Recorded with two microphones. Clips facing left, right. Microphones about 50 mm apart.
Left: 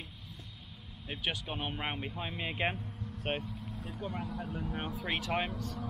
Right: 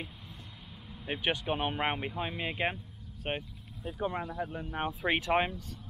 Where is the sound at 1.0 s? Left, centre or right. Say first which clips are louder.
Right 5 dB; right; by 4.7 s centre.